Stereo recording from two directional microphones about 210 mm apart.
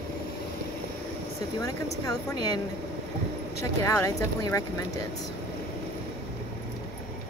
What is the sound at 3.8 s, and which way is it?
Speech, 15° left (ahead or behind).